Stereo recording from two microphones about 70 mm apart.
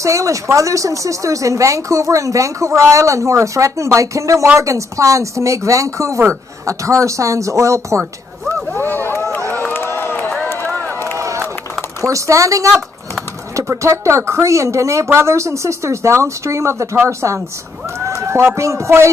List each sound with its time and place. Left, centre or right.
0.0 s speech: right
8.7 s a sound: left
9.5 s run: left
11.1 s run: right
12.0 s speech: right
18.0 s speech: right